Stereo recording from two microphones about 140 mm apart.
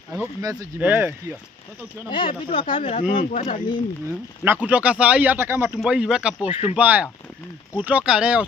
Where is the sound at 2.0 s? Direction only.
35° left (ahead or behind).